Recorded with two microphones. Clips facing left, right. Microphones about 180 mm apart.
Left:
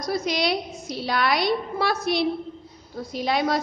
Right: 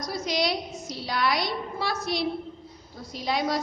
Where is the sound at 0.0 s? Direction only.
60° left (ahead or behind).